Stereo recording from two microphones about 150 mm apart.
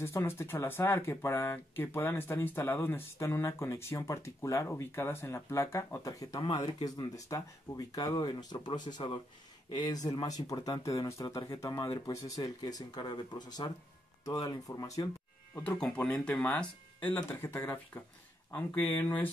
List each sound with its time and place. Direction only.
0.0 s speech: 15° left (ahead or behind)
15.5 s speech: 15° left (ahead or behind)